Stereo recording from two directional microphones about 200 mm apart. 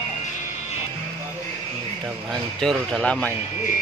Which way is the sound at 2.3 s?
Centre (ahead or behind).